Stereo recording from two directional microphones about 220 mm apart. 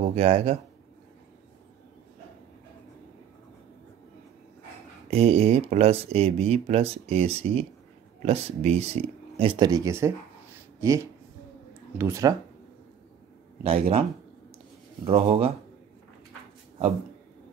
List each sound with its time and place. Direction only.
0.0 s speech: 30° right (ahead or behind)
5.1 s speech: 30° right (ahead or behind)
12.0 s speech: 15° right (ahead or behind)
13.7 s speech: 25° right (ahead or behind)
15.0 s speech: 25° right (ahead or behind)